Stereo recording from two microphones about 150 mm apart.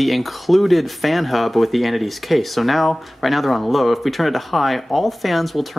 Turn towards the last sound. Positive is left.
turn(degrees=0)  # may be behind; listen again after turning